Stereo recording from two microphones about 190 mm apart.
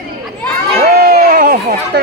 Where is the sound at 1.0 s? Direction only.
50° right (ahead or behind).